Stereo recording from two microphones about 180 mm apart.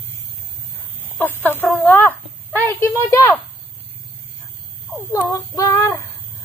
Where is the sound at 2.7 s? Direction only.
15° left (ahead or behind).